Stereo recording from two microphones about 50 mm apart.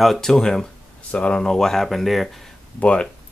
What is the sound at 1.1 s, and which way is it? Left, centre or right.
Speech, left.